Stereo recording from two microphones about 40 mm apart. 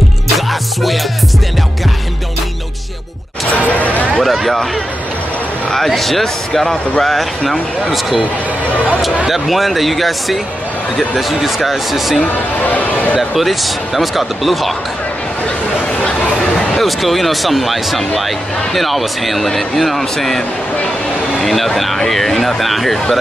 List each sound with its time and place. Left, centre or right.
3.5 s a sound: left
4.2 s a sound: centre
5.7 s speech: centre
9.3 s speech: centre
12.6 s speech: left
13.3 s speech: centre
16.7 s speech: centre